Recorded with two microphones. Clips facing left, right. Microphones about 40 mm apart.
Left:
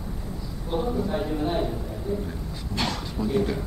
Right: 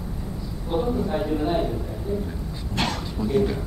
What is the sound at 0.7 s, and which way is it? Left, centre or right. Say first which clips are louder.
A man's voice: right 2 dB; centre.